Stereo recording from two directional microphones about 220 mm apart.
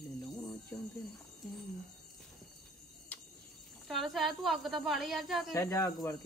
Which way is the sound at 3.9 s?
Centre (ahead or behind).